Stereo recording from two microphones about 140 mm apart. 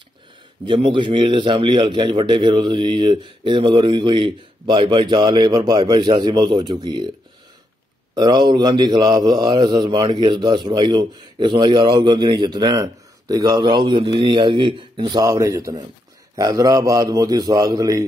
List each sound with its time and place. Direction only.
0.7 s mantra: 35° right (ahead or behind)
8.1 s mantra: 30° right (ahead or behind)
16.3 s a man's voice: 25° right (ahead or behind)